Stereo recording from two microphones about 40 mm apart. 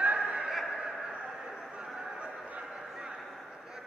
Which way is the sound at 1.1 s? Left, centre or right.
Right.